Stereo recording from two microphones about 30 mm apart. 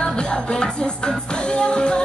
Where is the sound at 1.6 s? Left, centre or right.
Left.